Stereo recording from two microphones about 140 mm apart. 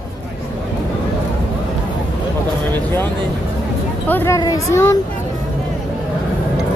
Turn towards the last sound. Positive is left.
turn(degrees=20)  # may be behind; listen again after turning